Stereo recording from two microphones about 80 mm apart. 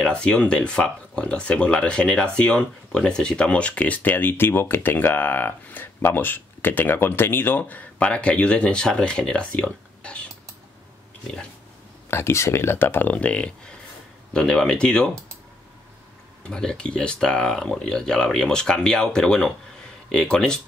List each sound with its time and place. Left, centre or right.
0.0 s speech: centre
12.1 s speech: left; by 15.0 s centre
16.4 s speech: centre